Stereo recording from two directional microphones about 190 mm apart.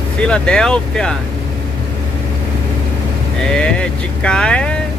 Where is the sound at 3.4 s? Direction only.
5° left (ahead or behind).